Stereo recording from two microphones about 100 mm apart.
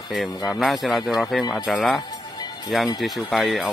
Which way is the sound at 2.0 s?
40° left (ahead or behind).